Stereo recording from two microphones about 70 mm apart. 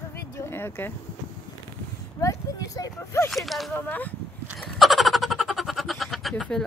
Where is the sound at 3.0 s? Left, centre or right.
Left.